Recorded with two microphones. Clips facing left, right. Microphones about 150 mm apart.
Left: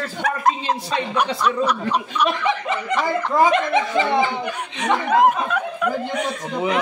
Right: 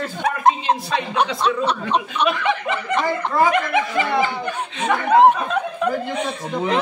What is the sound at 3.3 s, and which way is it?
Speech, 20° left (ahead or behind).